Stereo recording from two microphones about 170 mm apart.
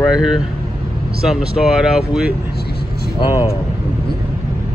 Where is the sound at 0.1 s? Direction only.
Centre (ahead or behind).